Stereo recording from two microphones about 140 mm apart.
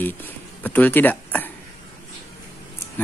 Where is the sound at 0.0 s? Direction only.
15° left (ahead or behind).